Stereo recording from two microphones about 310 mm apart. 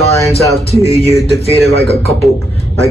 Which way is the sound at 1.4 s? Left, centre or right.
Centre.